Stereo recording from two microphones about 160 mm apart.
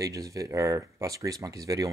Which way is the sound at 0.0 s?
20° right (ahead or behind).